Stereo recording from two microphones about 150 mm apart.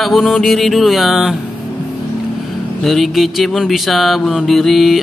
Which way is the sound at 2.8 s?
Centre (ahead or behind).